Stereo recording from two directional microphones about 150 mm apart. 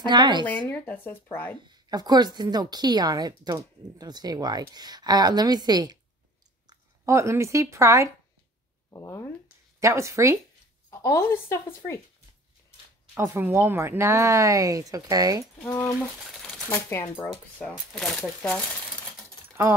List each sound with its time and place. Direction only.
0.0 s a woman's voice: 30° right (ahead or behind)
0.7 s speech: 15° left (ahead or behind)
1.7 s a woman's voice: 25° right (ahead or behind)
8.9 s speech: 20° left (ahead or behind)
9.8 s a woman's voice: 20° right (ahead or behind)
10.9 s a woman's voice: 20° left (ahead or behind)
13.1 s a woman's voice: 15° right (ahead or behind)
16.2 s a sound: centre (ahead or behind)
16.6 s speech: 15° left (ahead or behind)